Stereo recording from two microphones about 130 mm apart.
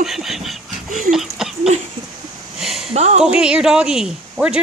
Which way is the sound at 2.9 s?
55° right (ahead or behind).